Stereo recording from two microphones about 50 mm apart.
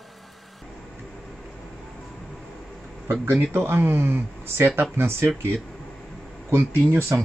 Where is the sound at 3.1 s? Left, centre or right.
Right.